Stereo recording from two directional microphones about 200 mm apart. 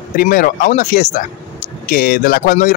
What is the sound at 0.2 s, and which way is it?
Speech, 45° left (ahead or behind).